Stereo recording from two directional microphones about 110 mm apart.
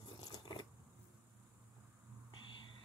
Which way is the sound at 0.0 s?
35° left (ahead or behind).